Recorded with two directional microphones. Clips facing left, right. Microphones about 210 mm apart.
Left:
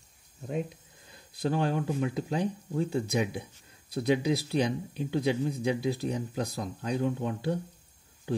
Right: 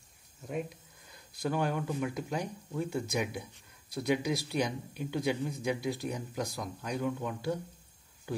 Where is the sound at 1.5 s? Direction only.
30° left (ahead or behind).